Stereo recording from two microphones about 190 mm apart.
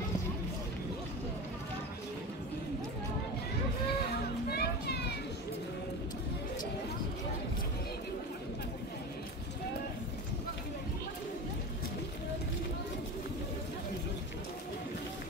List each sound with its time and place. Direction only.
4.5 s children playing: 55° left (ahead or behind)